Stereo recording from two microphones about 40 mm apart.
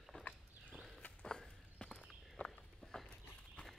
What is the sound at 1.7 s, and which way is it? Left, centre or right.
Walk, left.